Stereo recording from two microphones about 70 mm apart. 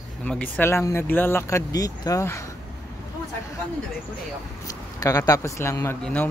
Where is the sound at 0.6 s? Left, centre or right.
Left.